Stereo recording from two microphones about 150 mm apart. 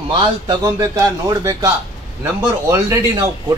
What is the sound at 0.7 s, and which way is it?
Speech, 20° right (ahead or behind).